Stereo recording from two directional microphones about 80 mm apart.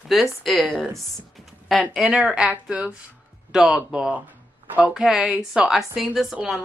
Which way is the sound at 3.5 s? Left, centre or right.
Centre.